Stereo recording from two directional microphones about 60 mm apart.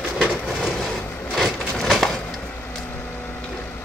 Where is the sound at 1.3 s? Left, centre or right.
Centre.